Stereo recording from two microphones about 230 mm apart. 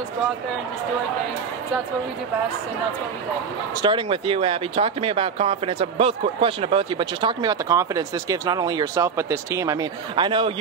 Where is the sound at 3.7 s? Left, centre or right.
Right.